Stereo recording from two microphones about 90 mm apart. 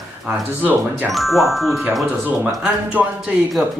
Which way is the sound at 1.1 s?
Centre (ahead or behind).